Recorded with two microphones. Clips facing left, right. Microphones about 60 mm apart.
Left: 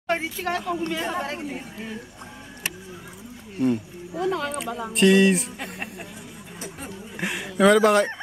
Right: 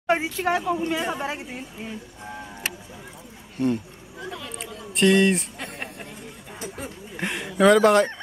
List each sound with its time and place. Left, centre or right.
0.0 s a woman's voice: centre
3.5 s speech: centre
4.2 s speech: left
4.9 s speech: centre
6.8 s a sound: centre